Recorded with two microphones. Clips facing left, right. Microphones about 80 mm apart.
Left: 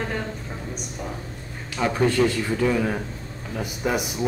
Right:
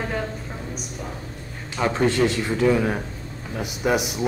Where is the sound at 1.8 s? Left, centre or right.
Right.